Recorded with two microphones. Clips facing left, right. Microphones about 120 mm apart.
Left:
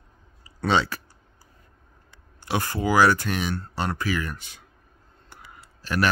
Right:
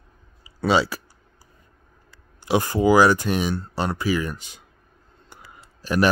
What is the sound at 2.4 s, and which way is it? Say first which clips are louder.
Speech: right 7 dB; 15° right (ahead or behind).